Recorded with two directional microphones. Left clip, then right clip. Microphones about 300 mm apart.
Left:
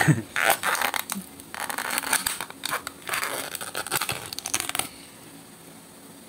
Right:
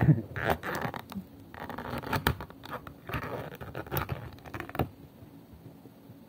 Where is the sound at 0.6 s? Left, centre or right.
Centre.